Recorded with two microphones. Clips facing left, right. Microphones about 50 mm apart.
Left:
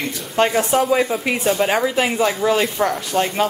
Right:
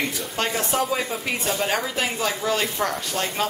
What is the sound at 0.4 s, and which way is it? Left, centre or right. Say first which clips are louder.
A woman's voice: left 8 dB; centre.